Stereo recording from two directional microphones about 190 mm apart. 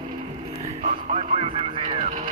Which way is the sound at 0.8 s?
35° right (ahead or behind).